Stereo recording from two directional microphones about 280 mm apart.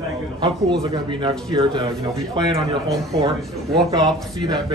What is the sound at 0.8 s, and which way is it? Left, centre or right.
Speech, centre.